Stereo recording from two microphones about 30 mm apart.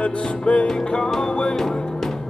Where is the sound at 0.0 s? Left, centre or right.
Left.